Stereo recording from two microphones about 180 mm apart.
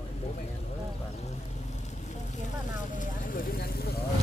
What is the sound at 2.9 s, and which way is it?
Speech, 45° left (ahead or behind).